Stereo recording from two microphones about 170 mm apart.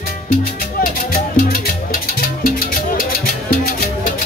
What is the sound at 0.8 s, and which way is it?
Music, 60° left (ahead or behind).